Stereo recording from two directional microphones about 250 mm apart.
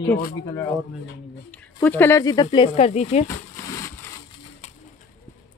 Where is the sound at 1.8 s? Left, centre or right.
Centre; by 3.2 s left.